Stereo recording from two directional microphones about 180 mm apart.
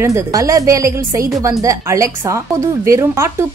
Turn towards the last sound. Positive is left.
turn(degrees=-15)  # may be behind; listen again after turning